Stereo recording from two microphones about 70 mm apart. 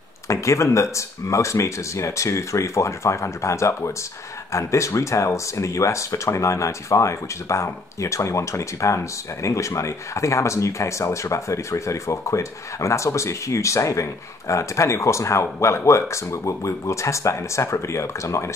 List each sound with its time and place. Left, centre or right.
0.3 s speech: left